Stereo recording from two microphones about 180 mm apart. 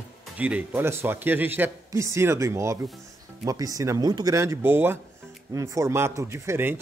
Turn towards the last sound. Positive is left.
turn(degrees=-10)  # may be behind; listen again after turning